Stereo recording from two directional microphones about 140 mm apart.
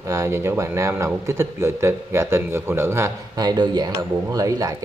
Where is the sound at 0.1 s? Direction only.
20° right (ahead or behind).